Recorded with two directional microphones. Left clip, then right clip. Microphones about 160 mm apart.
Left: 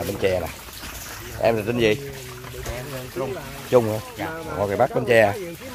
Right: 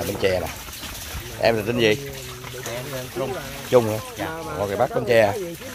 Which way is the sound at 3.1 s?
Centre (ahead or behind).